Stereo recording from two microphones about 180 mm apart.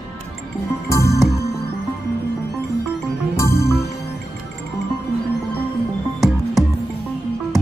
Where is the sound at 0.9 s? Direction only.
15° left (ahead or behind).